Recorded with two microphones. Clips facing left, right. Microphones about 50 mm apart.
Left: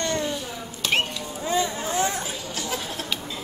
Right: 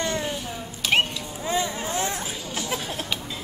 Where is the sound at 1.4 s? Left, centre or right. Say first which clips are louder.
Left 1 dB; centre.